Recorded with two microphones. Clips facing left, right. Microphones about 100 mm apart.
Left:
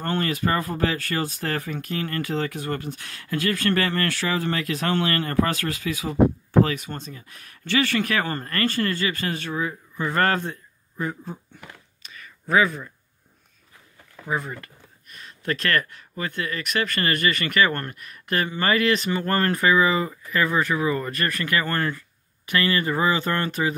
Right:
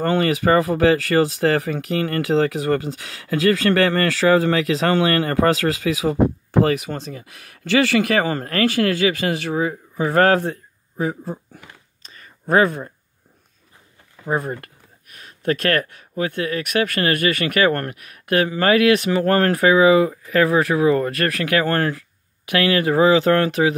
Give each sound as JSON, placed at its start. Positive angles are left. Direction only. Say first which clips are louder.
{"t": 0.0, "sound": "speech", "louder": "right 7 dB", "side_deg": -90}
{"t": 12.0, "sound": "a sound", "louder": "left 2 dB", "side_deg": -35}
{"t": 12.4, "sound": "speech", "louder": "right 4 dB", "side_deg": -50}
{"t": 14.3, "sound": "speech", "louder": "right 5 dB", "side_deg": -45}